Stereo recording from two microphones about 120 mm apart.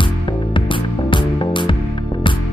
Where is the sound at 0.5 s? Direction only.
45° left (ahead or behind).